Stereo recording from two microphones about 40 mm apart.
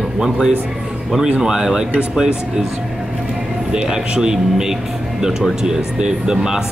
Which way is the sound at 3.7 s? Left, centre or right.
Centre.